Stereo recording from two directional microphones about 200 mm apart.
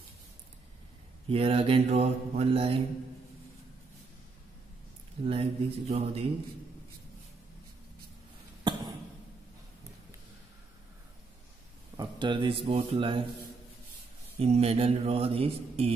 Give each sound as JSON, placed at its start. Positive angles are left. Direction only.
{"t": 1.3, "sound": "mantra", "side_deg": -30}
{"t": 5.2, "sound": "mantra", "side_deg": -30}
{"t": 8.6, "sound": "cough", "side_deg": -20}
{"t": 12.0, "sound": "speech", "side_deg": -25}
{"t": 14.4, "sound": "mantra", "side_deg": -30}